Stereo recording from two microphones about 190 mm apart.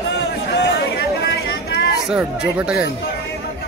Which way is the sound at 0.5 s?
60° left (ahead or behind).